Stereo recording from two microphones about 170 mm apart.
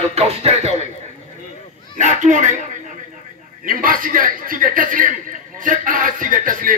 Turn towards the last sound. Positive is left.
turn(degrees=-55)  # may be behind; listen again after turning